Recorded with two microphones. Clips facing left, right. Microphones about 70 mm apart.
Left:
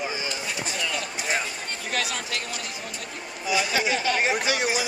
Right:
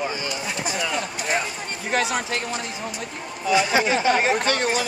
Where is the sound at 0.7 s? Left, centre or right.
Right.